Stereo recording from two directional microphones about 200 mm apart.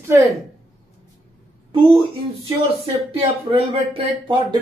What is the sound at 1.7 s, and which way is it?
Speech, 25° right (ahead or behind).